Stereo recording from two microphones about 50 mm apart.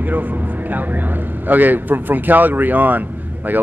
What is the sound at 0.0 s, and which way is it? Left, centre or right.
Speech, right.